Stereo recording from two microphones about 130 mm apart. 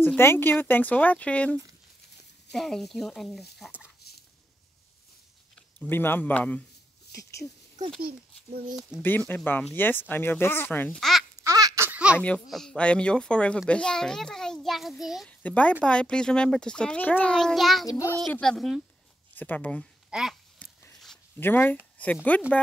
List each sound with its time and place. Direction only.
0.0 s a child's voice: 15° left (ahead or behind); by 3.7 s centre (ahead or behind)
5.8 s a child's voice: 15° left (ahead or behind)
8.9 s a child's voice: 5° right (ahead or behind)
9.3 s a child's voice: 10° left (ahead or behind)
11.0 s speech: centre (ahead or behind)
11.4 s a sound: 25° right (ahead or behind)
11.9 s baby laughter: 10° right (ahead or behind)
12.2 s a child's voice: 5° left (ahead or behind)
15.2 s a child's voice: 10° left (ahead or behind)
17.8 s speech: 25° left (ahead or behind)
18.3 s a child's voice: 5° left (ahead or behind)
19.3 s a child's voice: 15° left (ahead or behind)
20.1 s speech: 5° right (ahead or behind)
21.4 s speech: 15° left (ahead or behind)